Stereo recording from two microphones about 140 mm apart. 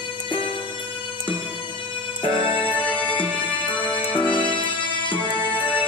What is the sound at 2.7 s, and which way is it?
Music, 10° left (ahead or behind).